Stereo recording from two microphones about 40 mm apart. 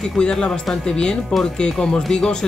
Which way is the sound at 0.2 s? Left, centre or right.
Left.